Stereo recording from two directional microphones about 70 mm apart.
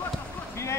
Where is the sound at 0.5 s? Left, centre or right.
Left.